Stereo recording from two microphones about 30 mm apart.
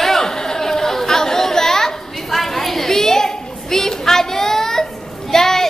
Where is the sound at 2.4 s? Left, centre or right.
Centre.